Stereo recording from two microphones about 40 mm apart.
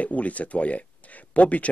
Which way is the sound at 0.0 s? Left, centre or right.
Left.